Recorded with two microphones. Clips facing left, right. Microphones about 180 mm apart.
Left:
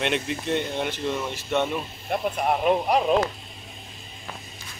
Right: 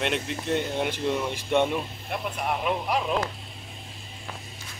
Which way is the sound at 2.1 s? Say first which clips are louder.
Left 6 dB; 40° left (ahead or behind).